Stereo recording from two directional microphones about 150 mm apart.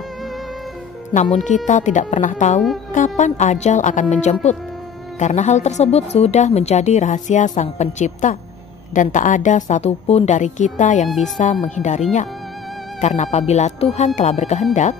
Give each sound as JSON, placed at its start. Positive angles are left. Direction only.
{"t": 1.7, "sound": "a woman's voice", "side_deg": 55}
{"t": 11.1, "sound": "speech", "side_deg": 0}
{"t": 11.6, "sound": "a woman's voice", "side_deg": 55}